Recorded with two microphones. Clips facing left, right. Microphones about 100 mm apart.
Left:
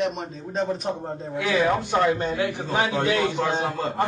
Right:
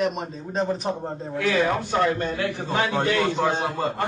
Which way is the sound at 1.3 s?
10° left (ahead or behind).